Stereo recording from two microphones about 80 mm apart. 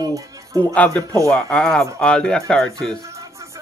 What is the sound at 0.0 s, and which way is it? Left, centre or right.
Music, right.